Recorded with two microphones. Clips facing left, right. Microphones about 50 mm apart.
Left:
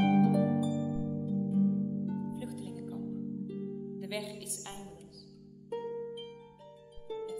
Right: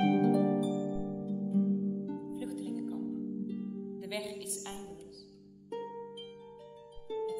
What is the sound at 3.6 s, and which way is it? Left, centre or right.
Music, centre.